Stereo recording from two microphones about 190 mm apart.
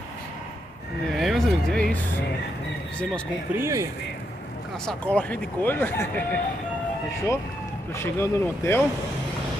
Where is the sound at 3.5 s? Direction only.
15° right (ahead or behind).